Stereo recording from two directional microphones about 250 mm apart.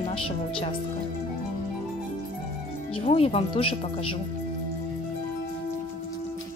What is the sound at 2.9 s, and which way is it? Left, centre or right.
Speech, left.